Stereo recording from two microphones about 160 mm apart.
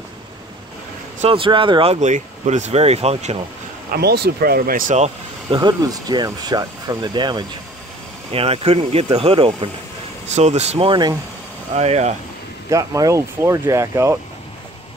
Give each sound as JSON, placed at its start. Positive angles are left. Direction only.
{"t": 1.2, "sound": "speech", "side_deg": -35}
{"t": 3.9, "sound": "speech", "side_deg": -85}
{"t": 5.5, "sound": "speech", "side_deg": -25}
{"t": 8.3, "sound": "speech", "side_deg": -35}
{"t": 11.7, "sound": "speech", "side_deg": -40}
{"t": 12.6, "sound": "speech", "side_deg": -20}